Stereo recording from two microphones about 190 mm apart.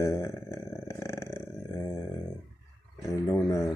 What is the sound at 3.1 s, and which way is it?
Speech, 20° left (ahead or behind).